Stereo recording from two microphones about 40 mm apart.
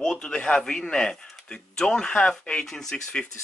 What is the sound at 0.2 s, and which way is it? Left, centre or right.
A man's voice, left.